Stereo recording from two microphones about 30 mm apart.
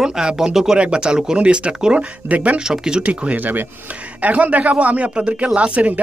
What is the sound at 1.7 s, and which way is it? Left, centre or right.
Speech, right.